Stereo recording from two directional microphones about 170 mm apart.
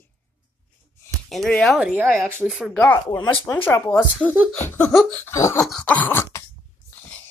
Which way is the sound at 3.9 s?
5° left (ahead or behind).